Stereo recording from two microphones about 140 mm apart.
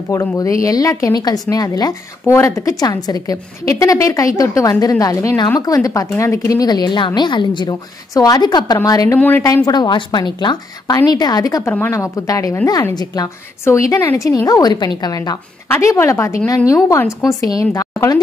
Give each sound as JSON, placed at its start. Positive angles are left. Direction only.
{"t": 0.4, "sound": "a woman's voice", "side_deg": 25}